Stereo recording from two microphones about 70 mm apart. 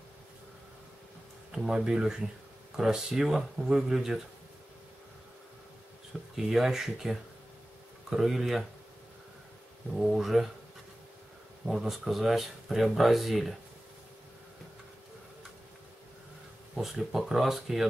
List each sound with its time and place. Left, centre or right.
1.5 s speech: centre
6.3 s speech: centre
9.9 s speech: centre
11.6 s speech: centre
16.7 s speech: centre